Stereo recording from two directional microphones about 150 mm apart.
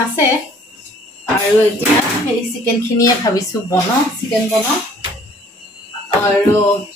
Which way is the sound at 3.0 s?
20° left (ahead or behind).